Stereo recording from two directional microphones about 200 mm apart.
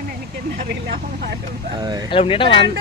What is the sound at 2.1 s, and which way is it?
Speech, 25° left (ahead or behind).